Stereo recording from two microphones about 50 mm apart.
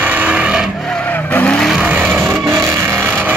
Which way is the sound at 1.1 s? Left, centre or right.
Left.